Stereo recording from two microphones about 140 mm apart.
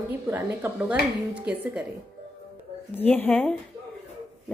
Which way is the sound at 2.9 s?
10° left (ahead or behind).